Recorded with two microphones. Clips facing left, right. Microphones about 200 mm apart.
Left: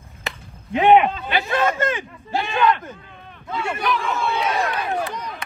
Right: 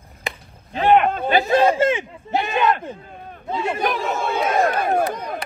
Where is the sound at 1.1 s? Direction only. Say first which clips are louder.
Right 6 dB; 50° right (ahead or behind); by 1.9 s 35° right (ahead or behind).